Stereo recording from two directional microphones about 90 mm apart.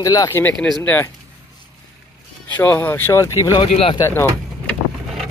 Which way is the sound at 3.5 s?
85° left.